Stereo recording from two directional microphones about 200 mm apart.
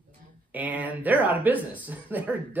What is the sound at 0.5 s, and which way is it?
Speech, 10° right (ahead or behind).